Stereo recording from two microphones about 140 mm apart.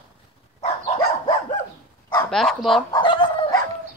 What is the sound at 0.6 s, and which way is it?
Dog, 50° left (ahead or behind).